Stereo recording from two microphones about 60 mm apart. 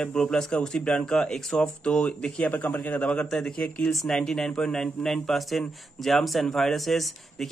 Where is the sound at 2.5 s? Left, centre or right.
Left.